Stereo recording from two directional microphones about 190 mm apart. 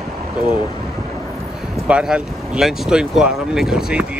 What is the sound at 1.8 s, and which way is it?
Speech, 5° right (ahead or behind).